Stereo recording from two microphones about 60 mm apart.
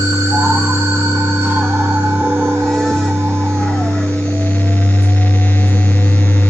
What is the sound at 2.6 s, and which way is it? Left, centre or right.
Music, centre.